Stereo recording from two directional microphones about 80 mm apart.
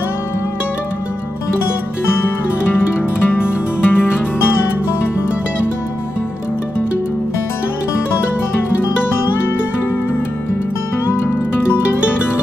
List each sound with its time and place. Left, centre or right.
3.3 s music: left